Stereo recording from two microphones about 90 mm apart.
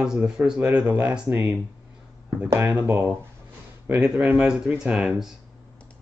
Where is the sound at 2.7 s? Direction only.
15° right (ahead or behind).